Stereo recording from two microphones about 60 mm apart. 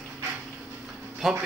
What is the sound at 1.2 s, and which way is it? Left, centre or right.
Speech, centre.